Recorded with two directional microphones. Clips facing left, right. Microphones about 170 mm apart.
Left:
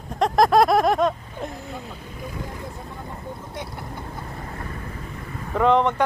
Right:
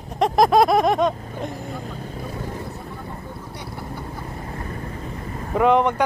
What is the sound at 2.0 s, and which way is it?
Vehicle, 35° right (ahead or behind).